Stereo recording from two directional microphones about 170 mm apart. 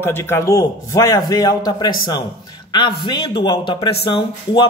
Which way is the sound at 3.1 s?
25° left (ahead or behind).